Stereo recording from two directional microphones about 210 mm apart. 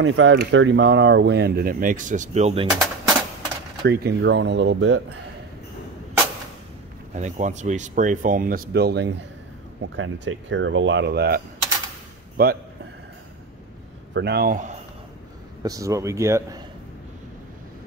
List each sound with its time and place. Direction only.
0.0 s speech: 65° right (ahead or behind); by 2.7 s 30° right (ahead or behind)
3.8 s speech: 50° right (ahead or behind)
7.2 s speech: 35° right (ahead or behind); by 9.1 s 50° right (ahead or behind)
9.9 s speech: 60° right (ahead or behind); by 12.5 s 45° right (ahead or behind)
14.1 s speech: 50° right (ahead or behind)
15.6 s speech: 15° right (ahead or behind)